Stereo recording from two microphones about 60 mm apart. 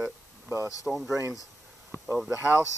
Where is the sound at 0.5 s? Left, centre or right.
Left.